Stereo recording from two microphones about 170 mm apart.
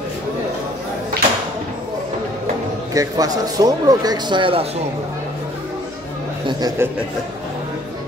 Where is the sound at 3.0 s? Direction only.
20° right (ahead or behind).